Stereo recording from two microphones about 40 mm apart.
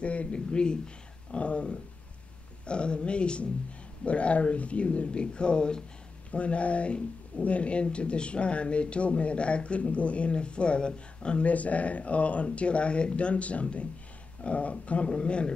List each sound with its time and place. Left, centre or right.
0.0 s speech: left
6.3 s speech: left